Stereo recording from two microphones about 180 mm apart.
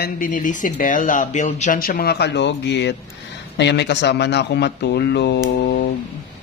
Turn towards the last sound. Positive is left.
turn(degrees=75)  # may be behind; listen again after turning